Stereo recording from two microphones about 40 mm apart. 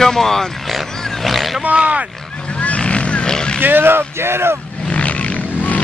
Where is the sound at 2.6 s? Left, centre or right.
Left.